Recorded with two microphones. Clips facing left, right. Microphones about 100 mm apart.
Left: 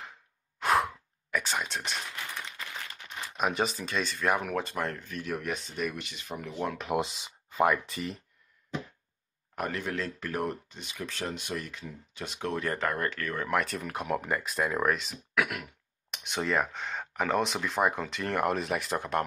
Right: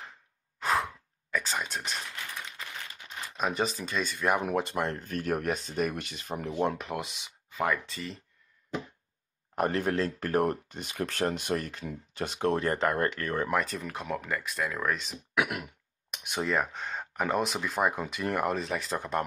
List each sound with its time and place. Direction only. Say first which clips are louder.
0.7 s sigh: left 3 dB; 5° left (ahead or behind)
3.3 s speech: left 1 dB; 5° left (ahead or behind)
4.4 s speech: right 2 dB; 20° right (ahead or behind)
5.0 s speech: right 4 dB; 45° right (ahead or behind)
6.5 s speech: right 5 dB; 25° right (ahead or behind)
7.0 s speech: left 6 dB; 30° left (ahead or behind)
9.6 s speech: right 5 dB; 40° right (ahead or behind)
13.5 s speech: even; centre (ahead or behind)
14.1 s speech: left 3 dB; 20° left (ahead or behind)
14.9 s speech: left 2 dB; centre (ahead or behind)
15.3 s speech: right 1 dB; 25° right (ahead or behind)
16.1 s speech: even; 5° right (ahead or behind)